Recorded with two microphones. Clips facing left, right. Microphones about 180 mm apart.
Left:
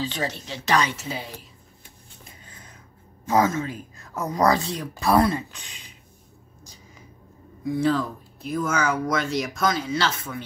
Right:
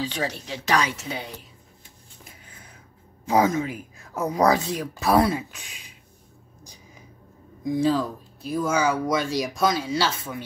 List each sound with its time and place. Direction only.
0.0 s speech: 10° right (ahead or behind)
0.9 s speech: centre (ahead or behind)
3.3 s speech: 15° right (ahead or behind)
7.6 s speech: 15° right (ahead or behind)